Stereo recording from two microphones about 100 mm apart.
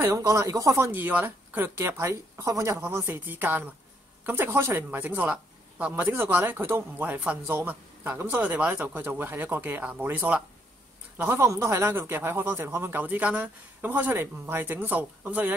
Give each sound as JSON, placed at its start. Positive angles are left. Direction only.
{"t": 0.0, "sound": "speech", "side_deg": -30}
{"t": 11.2, "sound": "speech", "side_deg": -30}